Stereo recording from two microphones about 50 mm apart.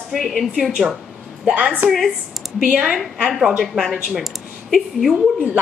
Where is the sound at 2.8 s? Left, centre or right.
Centre.